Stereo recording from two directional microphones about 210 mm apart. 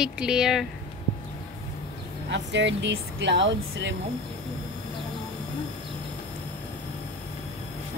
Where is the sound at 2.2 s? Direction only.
55° right (ahead or behind).